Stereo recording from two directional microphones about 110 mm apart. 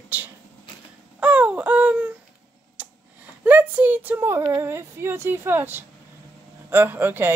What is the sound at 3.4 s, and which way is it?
Speech, 15° right (ahead or behind).